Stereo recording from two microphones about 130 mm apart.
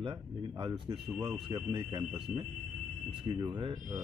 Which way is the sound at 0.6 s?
40° right (ahead or behind).